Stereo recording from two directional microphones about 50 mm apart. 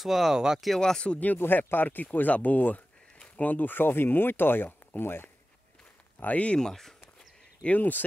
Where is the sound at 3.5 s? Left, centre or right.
Left.